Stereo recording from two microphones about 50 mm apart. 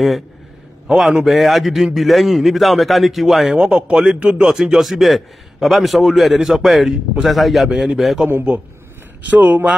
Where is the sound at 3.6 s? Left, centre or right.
Right.